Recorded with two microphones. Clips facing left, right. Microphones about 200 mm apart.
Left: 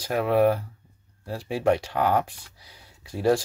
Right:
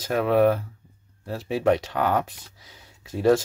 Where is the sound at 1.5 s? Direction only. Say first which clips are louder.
Right 1 dB; 20° right (ahead or behind).